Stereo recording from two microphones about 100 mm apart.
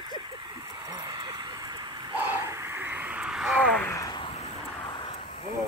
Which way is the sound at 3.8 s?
30° left (ahead or behind).